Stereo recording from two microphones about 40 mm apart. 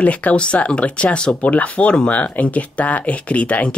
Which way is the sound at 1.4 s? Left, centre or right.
Left.